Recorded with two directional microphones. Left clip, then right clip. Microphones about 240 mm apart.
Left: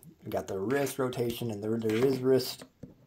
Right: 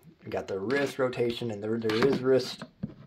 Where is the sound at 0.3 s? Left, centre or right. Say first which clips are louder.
Right 1 dB; left.